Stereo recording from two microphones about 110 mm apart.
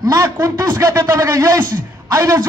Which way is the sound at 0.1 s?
30° right (ahead or behind).